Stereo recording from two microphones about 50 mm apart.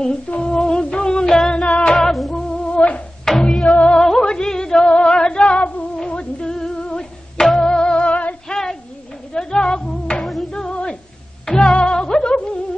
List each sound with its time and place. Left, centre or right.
0.0 s female singing: centre
1.6 s music: left
1.9 s female singing: centre
2.3 s music: centre
3.3 s music: centre
3.7 s music: left
4.0 s music: centre
5.6 s music: left
5.9 s music: centre
8.5 s female singing: centre
9.3 s a sound: centre
10.5 s music: centre